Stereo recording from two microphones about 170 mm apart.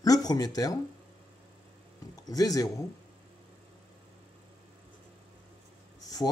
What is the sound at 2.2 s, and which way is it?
Speech, 20° left (ahead or behind).